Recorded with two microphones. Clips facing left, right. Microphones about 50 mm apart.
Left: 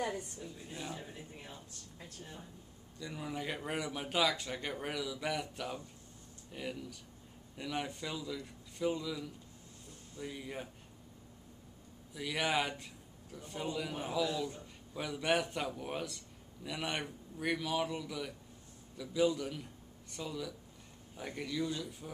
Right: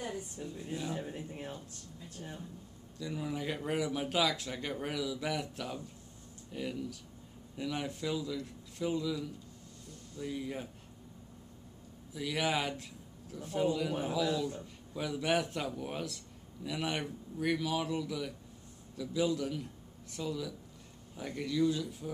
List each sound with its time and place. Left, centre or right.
0.4 s speech: right
3.0 s speech: centre
12.1 s a man's voice: centre